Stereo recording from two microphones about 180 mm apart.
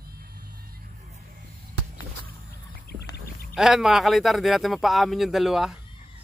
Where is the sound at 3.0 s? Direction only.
55° left (ahead or behind).